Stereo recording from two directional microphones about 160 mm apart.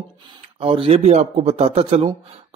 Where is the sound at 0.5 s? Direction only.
35° right (ahead or behind).